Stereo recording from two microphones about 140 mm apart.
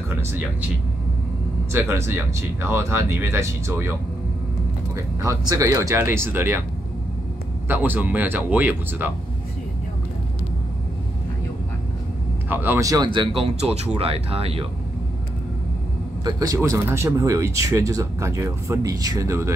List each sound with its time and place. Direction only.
0.1 s speech: 15° right (ahead or behind)
1.7 s speech: 20° right (ahead or behind)
5.2 s speech: 20° right (ahead or behind)
7.6 s speech: 15° right (ahead or behind)
12.4 s speech: 15° right (ahead or behind); by 14.7 s 45° right (ahead or behind)
16.3 s speech: 25° right (ahead or behind)